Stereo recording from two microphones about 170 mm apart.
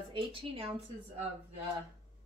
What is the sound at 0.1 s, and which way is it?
Speech, 30° right (ahead or behind).